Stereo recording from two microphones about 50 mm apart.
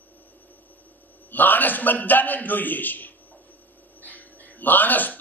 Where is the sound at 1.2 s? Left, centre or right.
Left.